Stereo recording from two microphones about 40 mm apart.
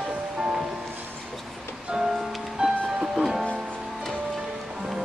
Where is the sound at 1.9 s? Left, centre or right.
Centre.